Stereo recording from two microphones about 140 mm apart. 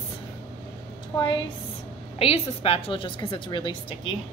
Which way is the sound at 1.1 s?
35° left (ahead or behind).